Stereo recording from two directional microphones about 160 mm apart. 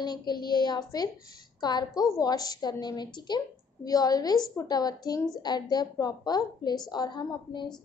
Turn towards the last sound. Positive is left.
turn(degrees=25)  # may be behind; listen again after turning